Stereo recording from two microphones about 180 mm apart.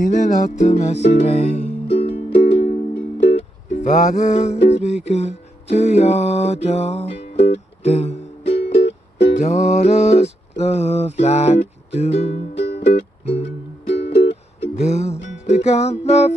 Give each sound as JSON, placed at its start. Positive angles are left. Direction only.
{"t": 0.0, "sound": "music", "side_deg": 40}
{"t": 9.3, "sound": "music", "side_deg": 40}